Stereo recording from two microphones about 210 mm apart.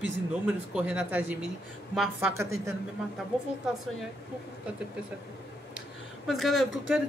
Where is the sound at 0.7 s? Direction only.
5° right (ahead or behind).